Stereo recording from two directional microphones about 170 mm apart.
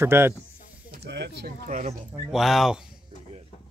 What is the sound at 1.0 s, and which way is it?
Speech, 80° right.